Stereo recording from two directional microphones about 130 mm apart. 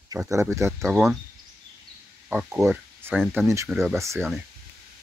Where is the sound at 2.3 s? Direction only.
10° right (ahead or behind).